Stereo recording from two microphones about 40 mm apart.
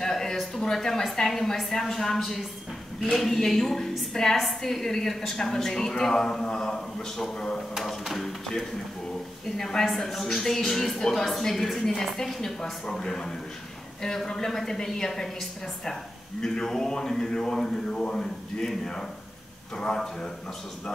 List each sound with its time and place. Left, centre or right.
0.0 s a sound: centre
0.6 s a man's voice: centre
8.0 s speech: centre
9.6 s a man's voice: centre